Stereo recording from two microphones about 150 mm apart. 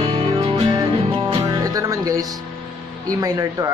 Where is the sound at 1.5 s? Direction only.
25° right (ahead or behind).